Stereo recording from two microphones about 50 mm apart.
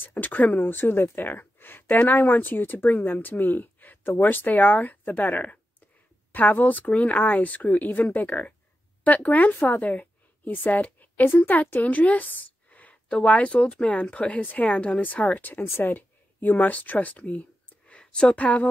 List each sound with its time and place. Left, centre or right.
0.0 s a woman's voice: left